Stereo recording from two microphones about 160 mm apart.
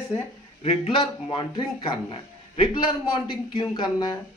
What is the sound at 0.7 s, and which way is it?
Speech, 35° left (ahead or behind).